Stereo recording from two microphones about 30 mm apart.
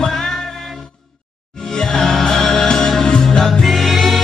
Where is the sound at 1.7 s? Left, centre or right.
Centre.